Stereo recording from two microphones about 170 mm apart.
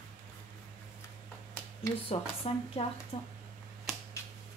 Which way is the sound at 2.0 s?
35° left (ahead or behind).